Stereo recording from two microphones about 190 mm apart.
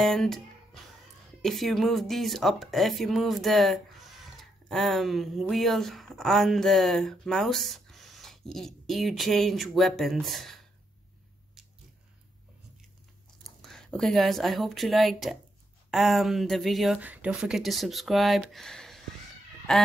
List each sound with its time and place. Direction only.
0.0 s speech: centre (ahead or behind)
1.4 s speech: centre (ahead or behind)
11.6 s biting: centre (ahead or behind)
13.6 s speech: 5° left (ahead or behind)
18.5 s a sound: centre (ahead or behind)
19.7 s speech: 5° left (ahead or behind)